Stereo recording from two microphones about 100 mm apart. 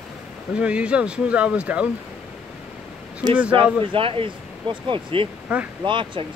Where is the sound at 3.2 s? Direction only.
50° right (ahead or behind).